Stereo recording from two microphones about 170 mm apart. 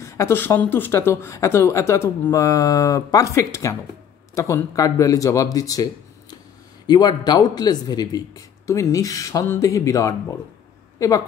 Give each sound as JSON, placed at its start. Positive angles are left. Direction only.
{"t": 0.0, "sound": "speech", "side_deg": 15}
{"t": 6.9, "sound": "a woman's voice", "side_deg": 25}